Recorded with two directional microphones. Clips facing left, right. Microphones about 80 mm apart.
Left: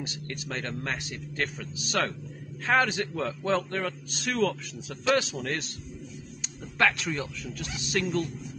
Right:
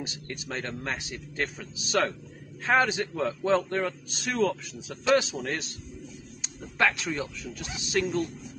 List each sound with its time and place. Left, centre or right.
0.0 s a man's voice: right
0.5 s a man's voice: centre
6.4 s a sound: centre
7.5 s a man's voice: centre